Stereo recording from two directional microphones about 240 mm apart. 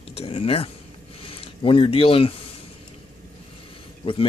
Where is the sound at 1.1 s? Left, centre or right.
Left.